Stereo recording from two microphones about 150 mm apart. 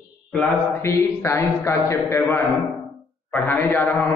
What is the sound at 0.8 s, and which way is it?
A man's voice, 20° left (ahead or behind).